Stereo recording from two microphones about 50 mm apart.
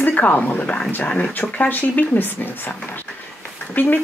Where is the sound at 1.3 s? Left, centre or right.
Left.